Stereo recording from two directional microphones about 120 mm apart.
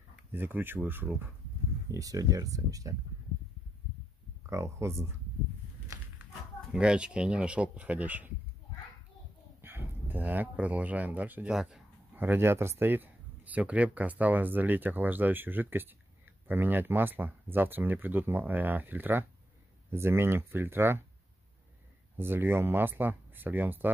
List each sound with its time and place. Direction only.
0.3 s speech: 15° right (ahead or behind)
1.9 s speech: 30° right (ahead or behind)
4.5 s speech: 25° right (ahead or behind)
6.7 s speech: 5° right (ahead or behind)
9.6 s a sound: 20° right (ahead or behind)
11.5 s speech: 5° right (ahead or behind)
12.2 s speech: 20° right (ahead or behind)
22.1 s speech: 20° right (ahead or behind)